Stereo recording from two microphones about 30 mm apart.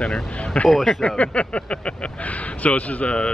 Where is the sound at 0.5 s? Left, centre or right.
Left.